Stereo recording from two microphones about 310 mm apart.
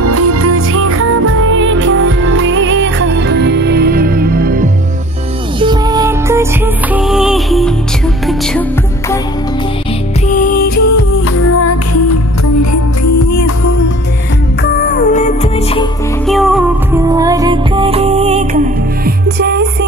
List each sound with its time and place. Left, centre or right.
0.0 s music: right
5.6 s music: centre
10.2 s music: left
11.5 s music: left
14.6 s music: left
16.3 s music: centre
17.1 s music: centre
19.0 s music: right